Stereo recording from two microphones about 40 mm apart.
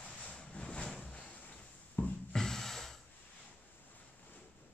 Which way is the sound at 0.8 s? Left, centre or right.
Left.